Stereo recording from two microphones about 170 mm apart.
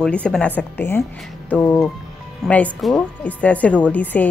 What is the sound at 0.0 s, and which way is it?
A woman's voice, 5° left (ahead or behind).